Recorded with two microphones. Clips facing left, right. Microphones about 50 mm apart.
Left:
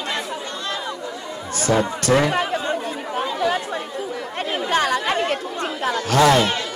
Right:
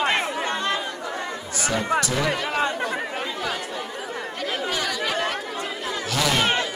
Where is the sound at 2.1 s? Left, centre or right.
Left.